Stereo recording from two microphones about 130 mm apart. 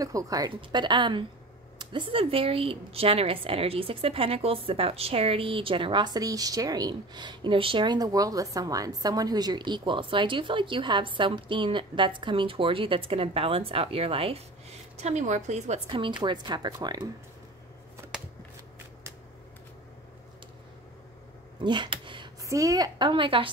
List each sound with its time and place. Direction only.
0.0 s a woman's voice: 25° right (ahead or behind); by 14.4 s 50° right (ahead or behind)
15.0 s a woman's voice: 60° right (ahead or behind)
15.9 s a woman's voice: 40° right (ahead or behind)
21.5 s a sound: 35° right (ahead or behind)
22.4 s a woman's voice: 25° right (ahead or behind); by 23.5 s 40° right (ahead or behind)